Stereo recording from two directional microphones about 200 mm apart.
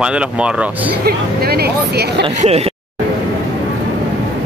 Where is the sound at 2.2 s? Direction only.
35° right (ahead or behind).